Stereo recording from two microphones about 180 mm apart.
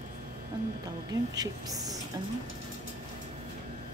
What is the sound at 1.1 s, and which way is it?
Speech, 20° right (ahead or behind).